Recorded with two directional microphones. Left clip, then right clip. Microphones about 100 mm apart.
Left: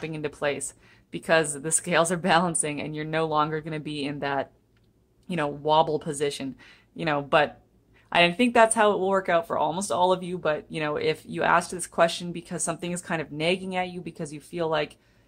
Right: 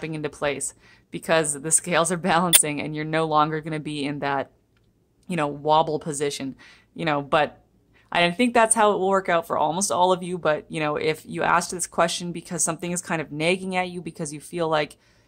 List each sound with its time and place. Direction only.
0.0 s a woman's voice: 25° right (ahead or behind)